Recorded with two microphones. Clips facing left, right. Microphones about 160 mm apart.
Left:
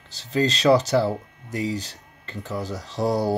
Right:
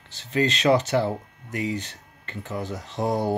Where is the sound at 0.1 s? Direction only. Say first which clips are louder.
Left 1 dB; 35° left (ahead or behind).